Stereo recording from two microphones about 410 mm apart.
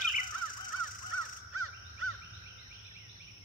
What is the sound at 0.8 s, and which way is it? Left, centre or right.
Crow, right.